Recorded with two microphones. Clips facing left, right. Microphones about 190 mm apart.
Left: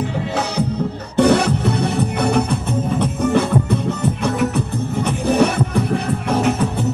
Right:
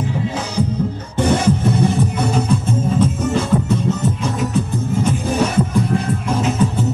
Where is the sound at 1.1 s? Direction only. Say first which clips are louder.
Left 2 dB; 65° left (ahead or behind).